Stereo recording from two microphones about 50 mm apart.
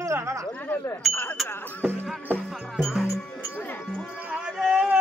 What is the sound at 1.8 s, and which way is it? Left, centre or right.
Music, right.